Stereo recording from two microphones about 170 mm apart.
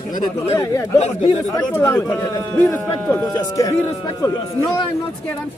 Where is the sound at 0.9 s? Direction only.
40° left (ahead or behind).